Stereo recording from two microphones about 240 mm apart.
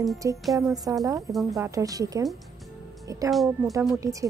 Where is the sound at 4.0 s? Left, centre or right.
Centre.